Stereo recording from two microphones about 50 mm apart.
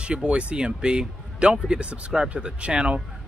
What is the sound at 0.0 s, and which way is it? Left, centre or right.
Speech, right.